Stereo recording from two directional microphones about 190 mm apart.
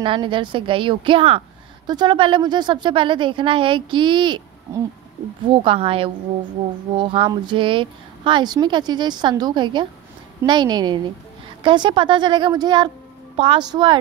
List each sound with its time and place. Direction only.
0.0 s a woman's voice: 25° right (ahead or behind)